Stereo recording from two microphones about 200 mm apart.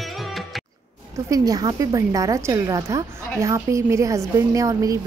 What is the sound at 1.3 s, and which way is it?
A woman's voice, 20° right (ahead or behind).